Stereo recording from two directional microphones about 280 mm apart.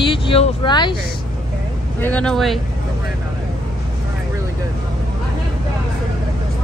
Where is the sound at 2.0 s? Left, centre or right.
Centre.